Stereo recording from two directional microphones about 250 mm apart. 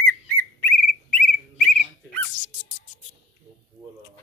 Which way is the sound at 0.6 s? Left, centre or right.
Centre.